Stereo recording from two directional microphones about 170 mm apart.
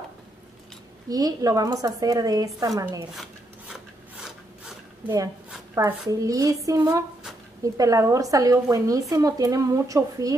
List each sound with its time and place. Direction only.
1.0 s a woman's voice: 20° right (ahead or behind)
5.0 s a woman's voice: 20° right (ahead or behind)